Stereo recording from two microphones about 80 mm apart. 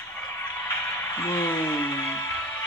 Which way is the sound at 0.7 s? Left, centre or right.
Left.